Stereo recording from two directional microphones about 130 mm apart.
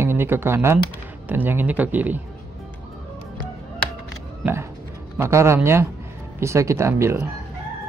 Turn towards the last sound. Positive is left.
turn(degrees=-20)  # may be behind; listen again after turning